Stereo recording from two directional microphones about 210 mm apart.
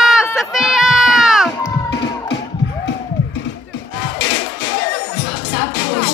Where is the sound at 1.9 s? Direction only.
55° left (ahead or behind).